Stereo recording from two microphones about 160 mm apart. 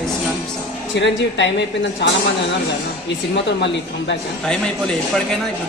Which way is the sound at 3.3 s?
90° left.